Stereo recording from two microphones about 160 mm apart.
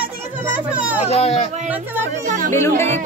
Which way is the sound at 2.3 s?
55° right (ahead or behind).